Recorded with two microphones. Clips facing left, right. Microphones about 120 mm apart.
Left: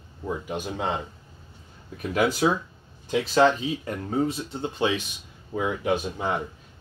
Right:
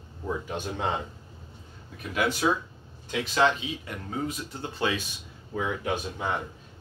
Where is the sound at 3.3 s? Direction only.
40° left (ahead or behind); by 6.1 s 15° left (ahead or behind).